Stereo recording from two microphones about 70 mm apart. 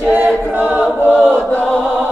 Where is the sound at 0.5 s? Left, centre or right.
Right.